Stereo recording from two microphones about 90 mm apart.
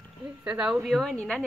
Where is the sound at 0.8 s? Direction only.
5° left (ahead or behind).